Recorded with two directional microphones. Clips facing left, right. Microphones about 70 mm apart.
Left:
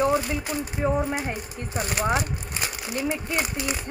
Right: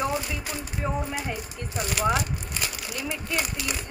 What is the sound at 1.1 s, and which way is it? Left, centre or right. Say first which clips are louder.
Speech: left 2 dB; left.